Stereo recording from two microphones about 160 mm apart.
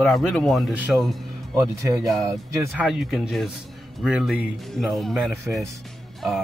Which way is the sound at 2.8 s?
Centre (ahead or behind).